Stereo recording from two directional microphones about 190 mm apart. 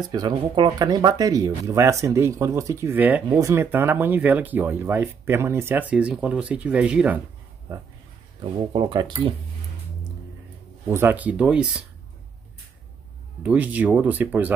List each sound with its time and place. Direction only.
0.1 s speech: 20° right (ahead or behind)
8.7 s speech: 25° right (ahead or behind)
10.9 s speech: 10° right (ahead or behind)
13.4 s speech: 10° right (ahead or behind)